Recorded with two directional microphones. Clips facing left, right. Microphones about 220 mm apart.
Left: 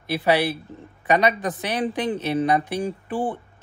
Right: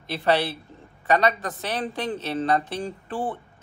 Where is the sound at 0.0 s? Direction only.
10° left (ahead or behind).